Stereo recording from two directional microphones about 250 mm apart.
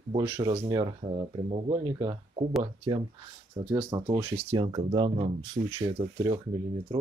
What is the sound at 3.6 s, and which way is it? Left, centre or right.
Speech, centre.